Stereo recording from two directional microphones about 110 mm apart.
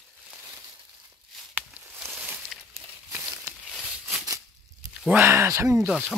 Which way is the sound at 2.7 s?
20° right (ahead or behind).